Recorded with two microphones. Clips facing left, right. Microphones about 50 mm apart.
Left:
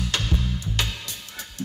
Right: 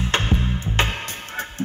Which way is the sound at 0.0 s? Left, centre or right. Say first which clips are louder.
Right 5 dB; right.